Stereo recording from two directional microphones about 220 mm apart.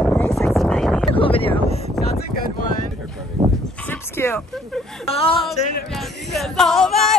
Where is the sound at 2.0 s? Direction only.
Centre (ahead or behind).